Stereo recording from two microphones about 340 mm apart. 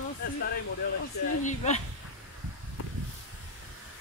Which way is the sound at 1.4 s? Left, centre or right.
Left.